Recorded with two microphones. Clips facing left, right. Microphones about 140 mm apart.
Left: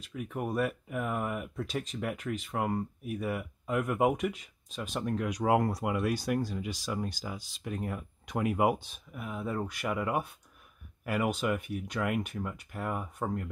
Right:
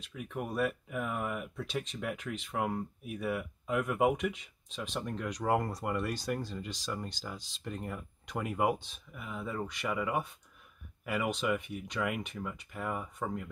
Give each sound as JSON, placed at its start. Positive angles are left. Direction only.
{"t": 0.0, "sound": "speech", "side_deg": 0}